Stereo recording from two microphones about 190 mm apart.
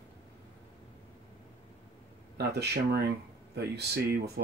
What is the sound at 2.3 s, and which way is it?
Speech, 60° right (ahead or behind).